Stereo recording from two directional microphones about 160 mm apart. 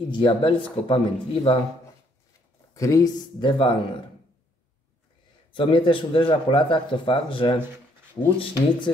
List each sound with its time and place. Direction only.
0.1 s a man's voice: 30° left (ahead or behind)
2.7 s speech: 20° left (ahead or behind)
5.5 s a man's voice: 30° left (ahead or behind)